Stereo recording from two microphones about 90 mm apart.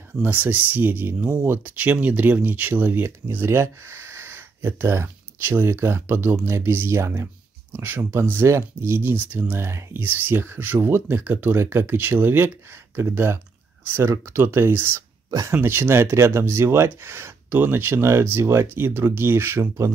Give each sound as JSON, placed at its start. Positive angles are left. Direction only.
{"t": 0.2, "sound": "speech", "side_deg": -20}